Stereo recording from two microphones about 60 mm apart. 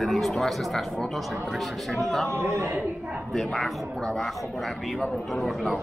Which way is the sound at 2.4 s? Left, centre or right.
Right.